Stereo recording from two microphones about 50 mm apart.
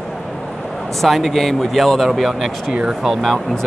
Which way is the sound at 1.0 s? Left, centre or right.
Centre.